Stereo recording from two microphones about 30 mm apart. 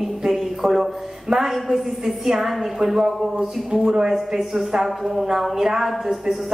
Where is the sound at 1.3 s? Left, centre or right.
Centre.